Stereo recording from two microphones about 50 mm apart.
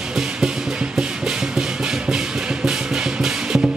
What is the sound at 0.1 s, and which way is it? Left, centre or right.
Music, centre.